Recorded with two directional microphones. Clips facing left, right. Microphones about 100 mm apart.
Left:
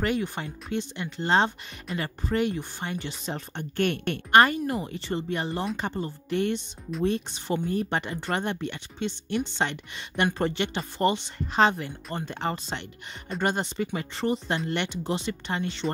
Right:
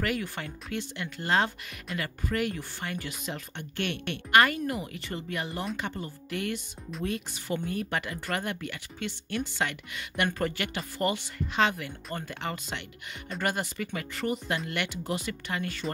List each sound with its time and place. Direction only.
0.0 s speech: 25° left (ahead or behind)